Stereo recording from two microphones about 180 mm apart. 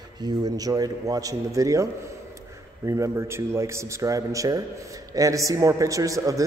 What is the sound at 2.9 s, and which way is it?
A man's voice, 15° right (ahead or behind).